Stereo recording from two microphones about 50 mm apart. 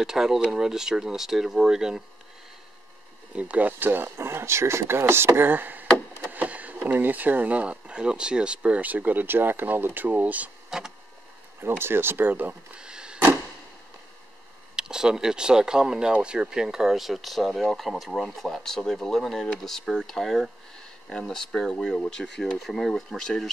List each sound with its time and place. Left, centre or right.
0.0 s speech: centre
3.3 s speech: right
10.7 s speech: centre
11.8 s speech: right
12.7 s a sound: centre
14.8 s speech: centre
23.1 s speech: centre